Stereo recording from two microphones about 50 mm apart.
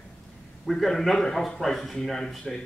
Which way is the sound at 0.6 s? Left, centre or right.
Centre.